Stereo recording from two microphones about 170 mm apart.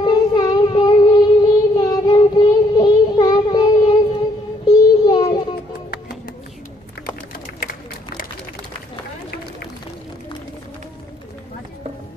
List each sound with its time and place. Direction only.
0.0 s child singing: 25° left (ahead or behind)